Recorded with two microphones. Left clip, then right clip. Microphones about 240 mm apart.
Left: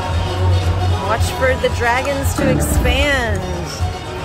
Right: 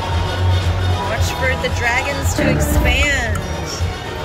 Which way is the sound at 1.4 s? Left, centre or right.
Centre.